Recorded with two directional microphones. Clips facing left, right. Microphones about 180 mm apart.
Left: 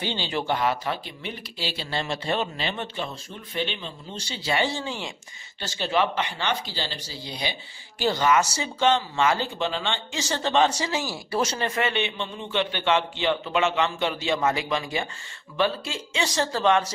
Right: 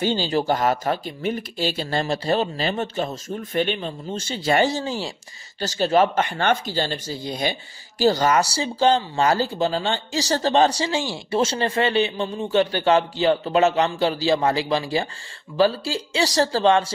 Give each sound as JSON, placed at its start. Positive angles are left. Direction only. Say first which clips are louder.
{"t": 0.0, "sound": "speech", "louder": "right 7 dB", "side_deg": -40}